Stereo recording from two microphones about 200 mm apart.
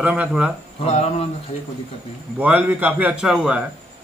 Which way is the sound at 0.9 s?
30° left (ahead or behind).